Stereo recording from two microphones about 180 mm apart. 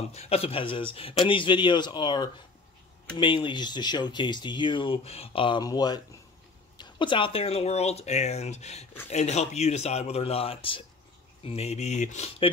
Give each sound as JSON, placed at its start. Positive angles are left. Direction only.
{"t": 0.1, "sound": "speech", "side_deg": 35}